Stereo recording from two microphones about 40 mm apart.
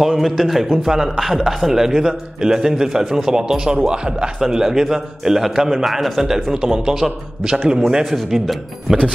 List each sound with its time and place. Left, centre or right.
0.0 s a man's voice: centre; by 7.8 s right
7.8 s a man's voice: centre